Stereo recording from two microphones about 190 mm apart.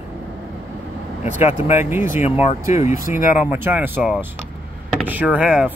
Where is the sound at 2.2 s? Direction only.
35° left (ahead or behind).